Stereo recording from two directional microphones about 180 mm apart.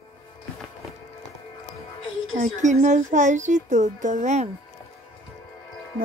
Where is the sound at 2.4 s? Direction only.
40° right (ahead or behind).